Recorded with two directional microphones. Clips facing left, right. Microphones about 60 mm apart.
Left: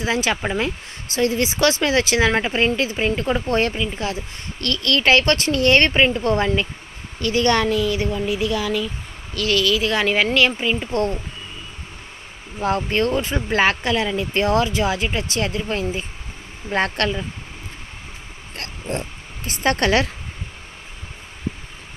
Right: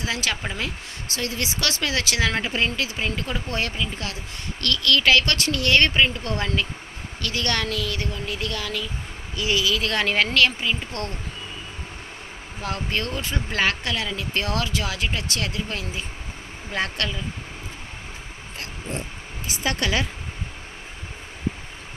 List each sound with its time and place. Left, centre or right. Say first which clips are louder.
0.0 s a woman's voice: left 6 dB; left
9.3 s speech: left 4 dB; centre
9.8 s a woman's voice: left 3 dB; centre
10.3 s speech: left 3 dB; left
12.5 s speech: left 8 dB; left
16.7 s speech: left 6 dB; left
18.6 s a sound: left 5 dB; left